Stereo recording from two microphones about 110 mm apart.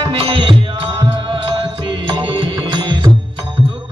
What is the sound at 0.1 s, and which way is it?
Music, 60° right (ahead or behind).